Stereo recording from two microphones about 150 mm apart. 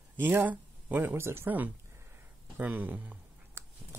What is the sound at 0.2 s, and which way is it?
Speech, 15° right (ahead or behind).